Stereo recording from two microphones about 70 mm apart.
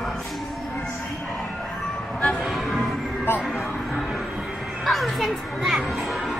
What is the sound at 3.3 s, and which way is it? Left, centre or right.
Speech, left.